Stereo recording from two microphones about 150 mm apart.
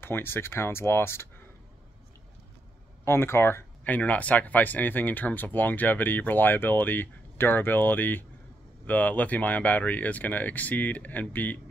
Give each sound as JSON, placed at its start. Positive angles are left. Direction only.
{"t": 0.0, "sound": "speech", "side_deg": 15}
{"t": 3.1, "sound": "speech", "side_deg": 15}